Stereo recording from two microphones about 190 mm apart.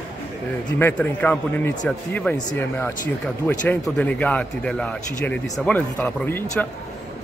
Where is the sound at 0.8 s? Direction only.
10° left (ahead or behind).